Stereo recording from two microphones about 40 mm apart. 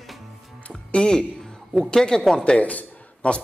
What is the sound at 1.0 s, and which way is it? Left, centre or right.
Speech, left.